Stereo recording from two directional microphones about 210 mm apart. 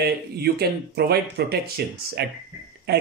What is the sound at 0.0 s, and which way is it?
Speech, 50° right (ahead or behind).